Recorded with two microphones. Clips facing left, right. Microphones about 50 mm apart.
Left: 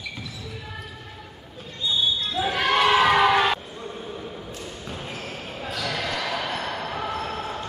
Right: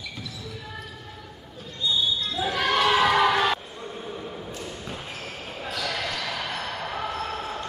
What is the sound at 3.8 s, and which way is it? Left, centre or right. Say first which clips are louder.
Basketball bounce: left 1 dB; centre.